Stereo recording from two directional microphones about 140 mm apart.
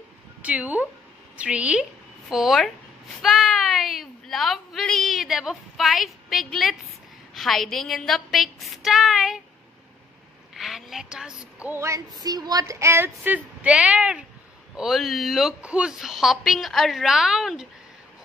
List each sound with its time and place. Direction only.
0.4 s a woman's voice: 10° right (ahead or behind)
10.5 s speech: centre (ahead or behind)
11.7 s music: 20° right (ahead or behind)
12.2 s a woman's voice: 30° right (ahead or behind); by 17.6 s 5° right (ahead or behind)